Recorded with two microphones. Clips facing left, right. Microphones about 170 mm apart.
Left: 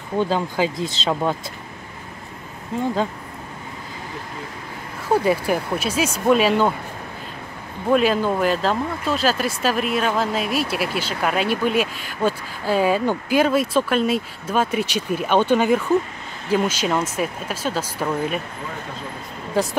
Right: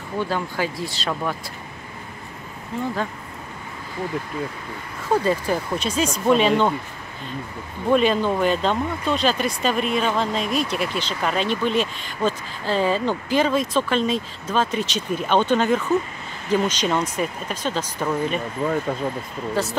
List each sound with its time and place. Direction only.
0.2 s speech: 20° left (ahead or behind)
5.1 s speech: 10° left (ahead or behind)
7.9 s speech: 5° left (ahead or behind)
19.6 s speech: 15° left (ahead or behind)